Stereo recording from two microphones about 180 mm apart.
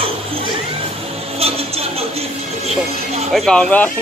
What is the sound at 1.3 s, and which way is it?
Music, 35° right (ahead or behind).